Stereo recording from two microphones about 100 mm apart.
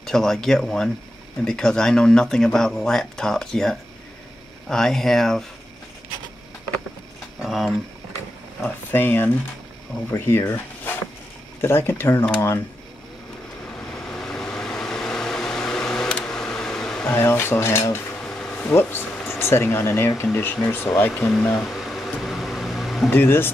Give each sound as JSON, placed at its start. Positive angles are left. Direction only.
{"t": 0.0, "sound": "speech", "side_deg": 5}
{"t": 7.4, "sound": "speech", "side_deg": 0}
{"t": 8.6, "sound": "speech", "side_deg": 20}
{"t": 13.9, "sound": "vehicle", "side_deg": 5}
{"t": 17.0, "sound": "speech", "side_deg": 20}
{"t": 18.2, "sound": "a sound", "side_deg": 10}
{"t": 18.7, "sound": "speech", "side_deg": 25}
{"t": 21.5, "sound": "music", "side_deg": 0}
{"t": 22.2, "sound": "a sound", "side_deg": 0}
{"t": 23.0, "sound": "speech", "side_deg": 20}